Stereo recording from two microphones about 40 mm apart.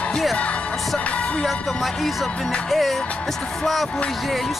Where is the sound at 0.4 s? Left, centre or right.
Left.